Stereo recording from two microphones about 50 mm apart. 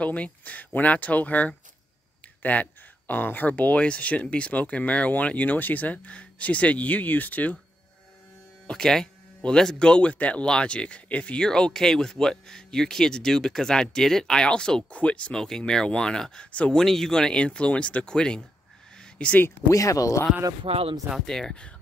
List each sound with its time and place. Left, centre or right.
0.0 s speech: left
8.6 s speech: centre
11.4 s speech: centre
15.3 s speech: centre
16.8 s speech: centre; by 19.4 s left
19.8 s speech: left
21.3 s speech: centre